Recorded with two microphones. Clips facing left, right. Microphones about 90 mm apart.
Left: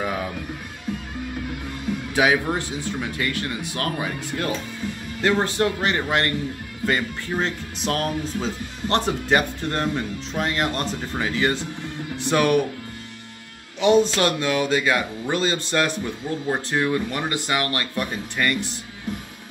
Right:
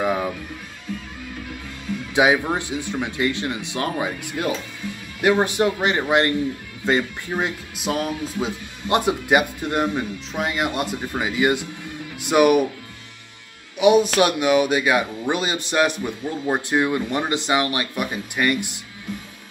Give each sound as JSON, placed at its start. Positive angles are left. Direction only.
{"t": 2.1, "sound": "speech", "side_deg": -15}
{"t": 13.7, "sound": "speech", "side_deg": -10}